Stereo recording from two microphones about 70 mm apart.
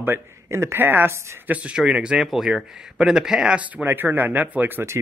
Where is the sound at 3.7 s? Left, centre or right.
Right.